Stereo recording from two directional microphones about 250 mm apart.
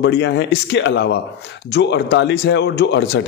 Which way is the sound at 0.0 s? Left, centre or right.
Left.